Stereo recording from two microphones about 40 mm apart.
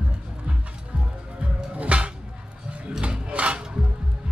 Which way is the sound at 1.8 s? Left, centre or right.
Right.